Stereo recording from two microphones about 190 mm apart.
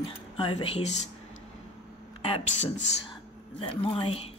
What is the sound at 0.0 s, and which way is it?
Speech, 30° left (ahead or behind).